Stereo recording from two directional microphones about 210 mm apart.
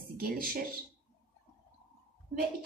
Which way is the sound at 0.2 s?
45° right (ahead or behind).